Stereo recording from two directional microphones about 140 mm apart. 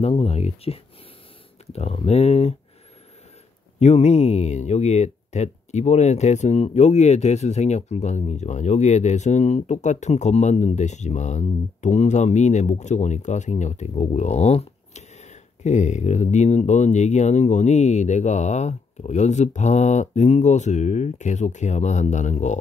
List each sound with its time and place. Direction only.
0.0 s speech: 45° left (ahead or behind)
3.8 s speech: 50° left (ahead or behind)